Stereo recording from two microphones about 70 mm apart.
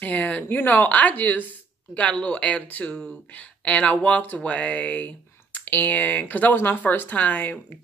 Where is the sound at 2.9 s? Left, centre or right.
Centre.